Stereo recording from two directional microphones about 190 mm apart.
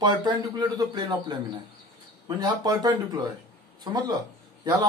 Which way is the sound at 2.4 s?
20° right (ahead or behind).